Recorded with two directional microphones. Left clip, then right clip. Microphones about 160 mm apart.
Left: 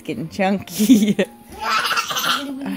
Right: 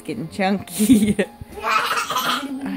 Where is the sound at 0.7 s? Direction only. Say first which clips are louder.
Left 2 dB; 25° right (ahead or behind).